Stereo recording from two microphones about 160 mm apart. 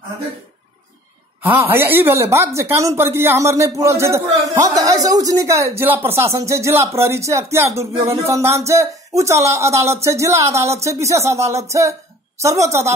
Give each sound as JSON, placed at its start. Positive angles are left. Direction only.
{"t": 1.7, "sound": "a woman's voice", "side_deg": -15}